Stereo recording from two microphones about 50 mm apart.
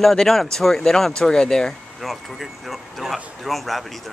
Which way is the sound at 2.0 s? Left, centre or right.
Centre.